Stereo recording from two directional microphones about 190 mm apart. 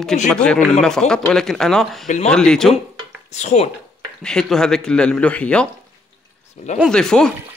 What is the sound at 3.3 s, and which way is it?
Speech, 35° left (ahead or behind).